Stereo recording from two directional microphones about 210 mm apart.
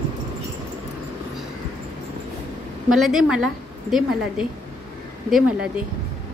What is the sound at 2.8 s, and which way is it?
A woman's voice, centre (ahead or behind).